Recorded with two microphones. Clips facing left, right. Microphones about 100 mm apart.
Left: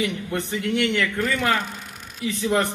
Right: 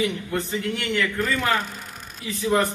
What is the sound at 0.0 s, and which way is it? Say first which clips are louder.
Speech: right 1 dB; 20° right (ahead or behind).